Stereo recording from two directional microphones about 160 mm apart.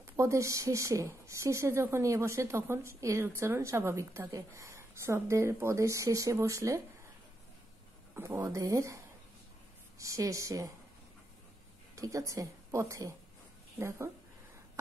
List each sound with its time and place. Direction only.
0.0 s a woman's voice: 15° right (ahead or behind)
8.2 s speech: 15° right (ahead or behind)
11.9 s a woman's voice: 20° right (ahead or behind)